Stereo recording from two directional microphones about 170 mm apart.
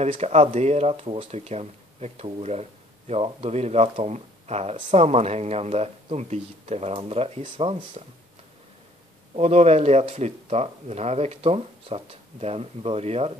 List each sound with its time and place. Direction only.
0.0 s speech: 40° right (ahead or behind)
9.3 s speech: 40° right (ahead or behind)